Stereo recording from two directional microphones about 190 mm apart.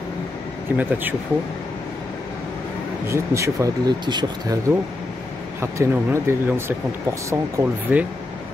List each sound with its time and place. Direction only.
0.7 s speech: 10° right (ahead or behind)
3.1 s speech: 15° right (ahead or behind)